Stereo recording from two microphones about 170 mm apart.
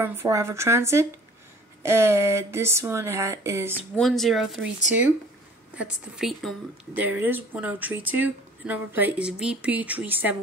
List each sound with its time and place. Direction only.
0.0 s speech: 15° right (ahead or behind)
3.9 s speech: centre (ahead or behind)
5.8 s speech: 5° right (ahead or behind)